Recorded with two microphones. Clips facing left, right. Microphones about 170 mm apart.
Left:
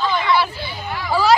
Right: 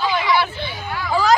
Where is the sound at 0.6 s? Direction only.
5° left (ahead or behind).